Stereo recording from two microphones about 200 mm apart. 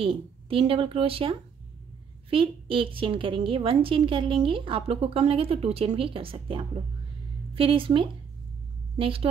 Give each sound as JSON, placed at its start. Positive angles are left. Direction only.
{"t": 0.0, "sound": "a woman's voice", "side_deg": -25}